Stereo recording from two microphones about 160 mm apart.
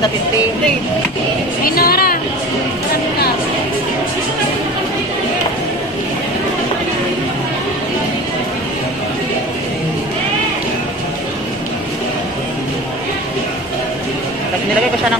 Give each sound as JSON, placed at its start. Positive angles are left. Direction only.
{"t": 1.6, "sound": "a woman's voice", "side_deg": 70}